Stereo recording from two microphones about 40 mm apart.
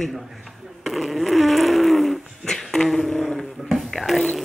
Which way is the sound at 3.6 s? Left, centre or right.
Centre.